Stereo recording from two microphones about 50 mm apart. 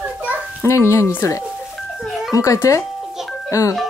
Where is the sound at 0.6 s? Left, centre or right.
Left.